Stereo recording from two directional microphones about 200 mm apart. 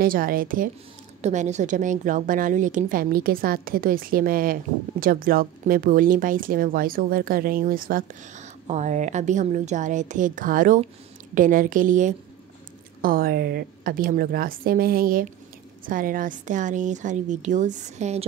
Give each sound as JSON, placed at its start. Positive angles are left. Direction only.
{"t": 0.0, "sound": "a woman's voice", "side_deg": -45}